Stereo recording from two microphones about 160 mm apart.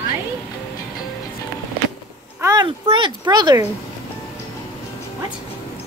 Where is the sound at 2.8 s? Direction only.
30° right (ahead or behind).